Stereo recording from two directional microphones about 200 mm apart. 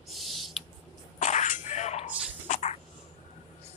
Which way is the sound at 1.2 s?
35° left (ahead or behind).